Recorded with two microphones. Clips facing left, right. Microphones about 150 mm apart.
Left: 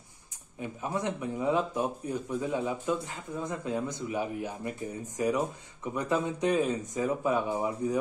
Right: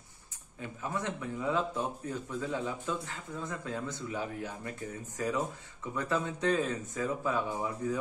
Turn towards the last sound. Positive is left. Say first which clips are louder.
# left 4 dB
turn(degrees=15)  # may be behind; listen again after turning